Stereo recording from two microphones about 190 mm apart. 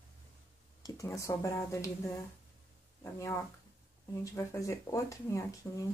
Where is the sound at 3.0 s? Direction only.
15° left (ahead or behind).